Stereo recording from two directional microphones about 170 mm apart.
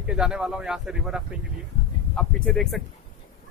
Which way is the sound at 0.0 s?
5° right (ahead or behind).